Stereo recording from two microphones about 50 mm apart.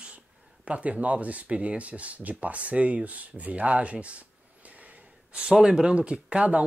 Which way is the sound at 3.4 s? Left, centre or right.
Right.